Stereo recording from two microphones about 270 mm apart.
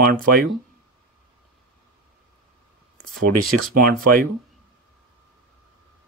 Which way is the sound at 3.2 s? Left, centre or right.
Right.